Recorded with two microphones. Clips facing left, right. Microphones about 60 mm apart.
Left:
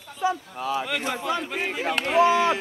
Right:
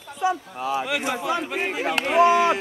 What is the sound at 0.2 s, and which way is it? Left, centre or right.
A man's voice, centre.